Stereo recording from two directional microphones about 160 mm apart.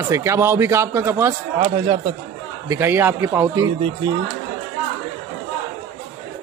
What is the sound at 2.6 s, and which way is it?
Speech, 15° right (ahead or behind).